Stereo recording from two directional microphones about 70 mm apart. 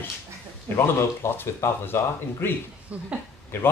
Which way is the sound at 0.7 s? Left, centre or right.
Left.